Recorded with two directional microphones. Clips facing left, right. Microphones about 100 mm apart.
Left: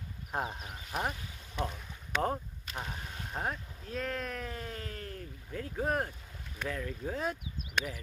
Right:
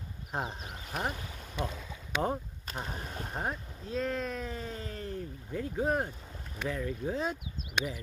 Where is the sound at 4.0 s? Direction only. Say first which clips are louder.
Right 3 dB; 15° right (ahead or behind).